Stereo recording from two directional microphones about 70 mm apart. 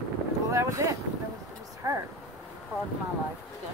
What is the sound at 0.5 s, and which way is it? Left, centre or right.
Boat, right.